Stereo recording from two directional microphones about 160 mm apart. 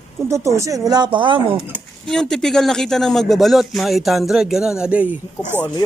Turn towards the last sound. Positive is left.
turn(degrees=-10)  # may be behind; listen again after turning